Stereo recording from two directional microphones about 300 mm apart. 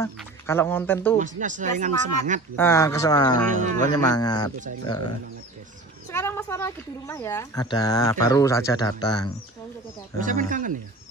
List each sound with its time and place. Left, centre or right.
0.2 s speech: centre
1.1 s speech: right
2.5 s speech: centre
3.5 s speech: right
3.9 s speech: centre
6.1 s speech: centre
10.2 s speech: right